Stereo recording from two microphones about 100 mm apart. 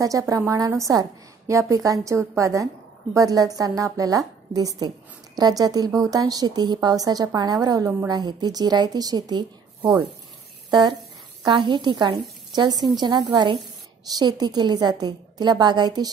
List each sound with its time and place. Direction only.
0.0 s a woman's voice: 35° right (ahead or behind)
10.7 s a woman's voice: 50° right (ahead or behind)